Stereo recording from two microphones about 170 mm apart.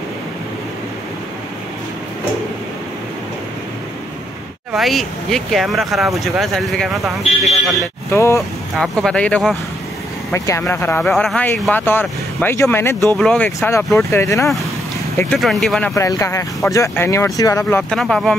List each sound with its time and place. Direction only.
4.7 s speech: centre (ahead or behind)
8.1 s speech: 15° left (ahead or behind)
8.7 s speech: centre (ahead or behind)
10.3 s speech: 15° left (ahead or behind)
13.2 s speech: 5° left (ahead or behind)
13.6 s speech: 15° left (ahead or behind)
15.3 s speech: centre (ahead or behind)
15.9 s speech: 20° left (ahead or behind); by 18.3 s centre (ahead or behind)